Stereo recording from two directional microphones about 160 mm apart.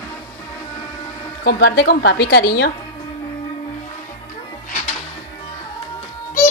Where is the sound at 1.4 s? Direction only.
80° left.